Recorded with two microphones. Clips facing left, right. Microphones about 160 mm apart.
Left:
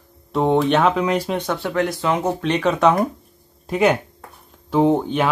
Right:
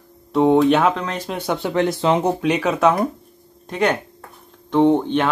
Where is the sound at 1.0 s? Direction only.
10° left (ahead or behind).